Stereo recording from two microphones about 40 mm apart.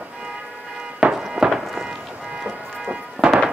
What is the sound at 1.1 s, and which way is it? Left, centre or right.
Fireworks, centre.